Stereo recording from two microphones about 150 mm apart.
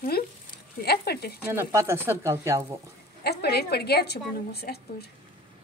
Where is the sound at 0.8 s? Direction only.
90° left.